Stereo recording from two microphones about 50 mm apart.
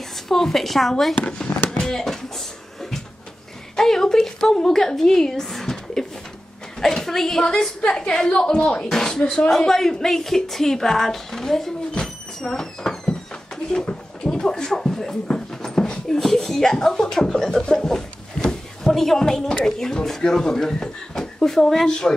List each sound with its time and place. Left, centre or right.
0.3 s a woman's voice: centre
1.7 s a sound: centre
3.7 s a woman's voice: centre
8.9 s slap: centre
9.2 s speech: left
9.5 s a woman's voice: centre
11.9 s a sound: centre
15.2 s dog: centre
19.5 s a woman's voice: centre